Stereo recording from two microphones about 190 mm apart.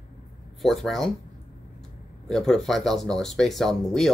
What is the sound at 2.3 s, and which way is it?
Speech, centre (ahead or behind).